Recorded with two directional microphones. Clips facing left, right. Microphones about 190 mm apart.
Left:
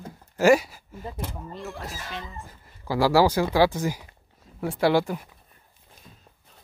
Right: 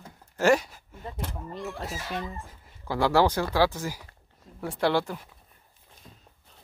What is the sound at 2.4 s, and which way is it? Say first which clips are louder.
Speech: left 3 dB; 5° left (ahead or behind).